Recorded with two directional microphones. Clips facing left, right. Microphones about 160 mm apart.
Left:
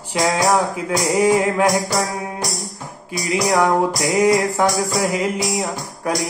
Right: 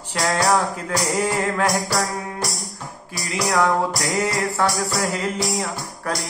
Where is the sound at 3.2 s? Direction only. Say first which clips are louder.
Left 3 dB; 15° left (ahead or behind).